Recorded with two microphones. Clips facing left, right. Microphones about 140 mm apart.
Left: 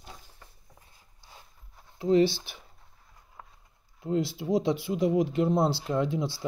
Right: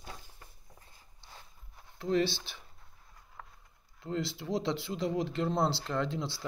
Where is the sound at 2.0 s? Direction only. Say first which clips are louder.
Left 7 dB; 15° left (ahead or behind).